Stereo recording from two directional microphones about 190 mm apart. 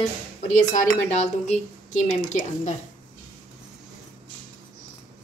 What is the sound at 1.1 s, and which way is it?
A woman's voice, 35° left (ahead or behind).